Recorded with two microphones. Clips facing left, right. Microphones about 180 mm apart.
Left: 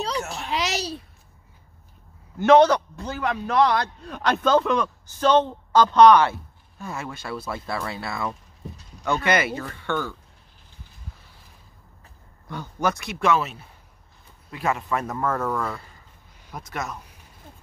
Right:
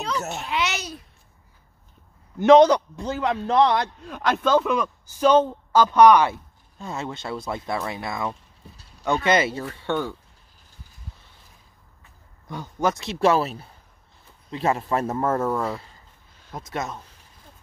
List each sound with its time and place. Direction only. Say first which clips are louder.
0.5 s a child's voice: left 2 dB; 35° left (ahead or behind)
2.4 s speech: right 2 dB; 15° right (ahead or behind)
4.1 s speech: even; 5° right (ahead or behind); by 10.1 s 25° right (ahead or behind)
12.4 s speech: right 1 dB; 20° right (ahead or behind)